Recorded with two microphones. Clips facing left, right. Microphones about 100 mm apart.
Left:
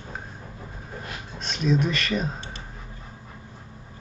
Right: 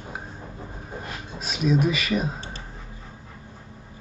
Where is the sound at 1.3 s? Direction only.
5° right (ahead or behind).